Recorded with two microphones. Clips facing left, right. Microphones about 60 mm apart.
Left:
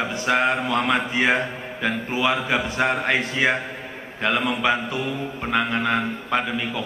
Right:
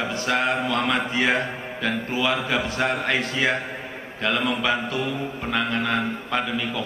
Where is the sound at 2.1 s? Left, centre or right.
Centre.